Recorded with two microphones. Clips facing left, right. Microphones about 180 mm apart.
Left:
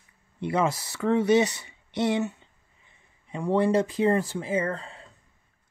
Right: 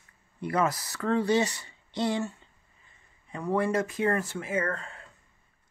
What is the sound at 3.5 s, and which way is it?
Speech, 30° left (ahead or behind).